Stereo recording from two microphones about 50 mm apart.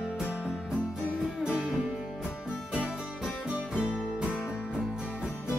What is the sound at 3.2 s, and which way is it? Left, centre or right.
Music, right.